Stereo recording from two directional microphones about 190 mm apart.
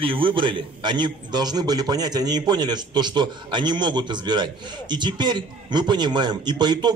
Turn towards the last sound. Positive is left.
turn(degrees=-25)  # may be behind; listen again after turning